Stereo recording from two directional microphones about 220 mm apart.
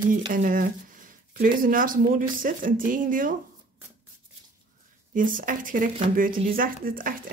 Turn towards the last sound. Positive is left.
turn(degrees=-40)  # may be behind; listen again after turning